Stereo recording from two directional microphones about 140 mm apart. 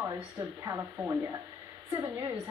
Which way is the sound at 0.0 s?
20° right (ahead or behind).